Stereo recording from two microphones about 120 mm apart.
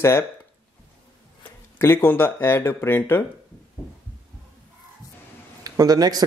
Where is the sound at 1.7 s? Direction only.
20° left (ahead or behind).